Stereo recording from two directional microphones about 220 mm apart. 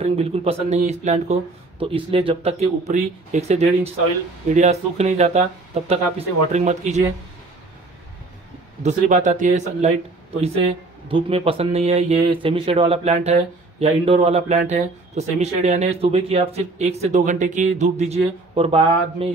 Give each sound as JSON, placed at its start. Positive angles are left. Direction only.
{"t": 0.0, "sound": "a man's voice", "side_deg": -25}
{"t": 8.8, "sound": "a man's voice", "side_deg": -35}
{"t": 11.1, "sound": "speech", "side_deg": -25}